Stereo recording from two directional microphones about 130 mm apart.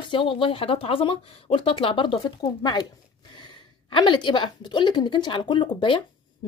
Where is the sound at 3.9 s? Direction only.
35° left (ahead or behind).